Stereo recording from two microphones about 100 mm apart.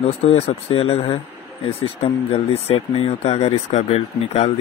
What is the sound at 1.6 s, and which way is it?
Speech, 90° left.